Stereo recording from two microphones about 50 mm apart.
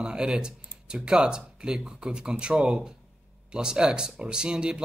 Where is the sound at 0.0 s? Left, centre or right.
Centre.